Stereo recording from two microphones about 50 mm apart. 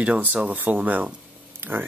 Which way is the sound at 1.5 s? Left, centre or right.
Right.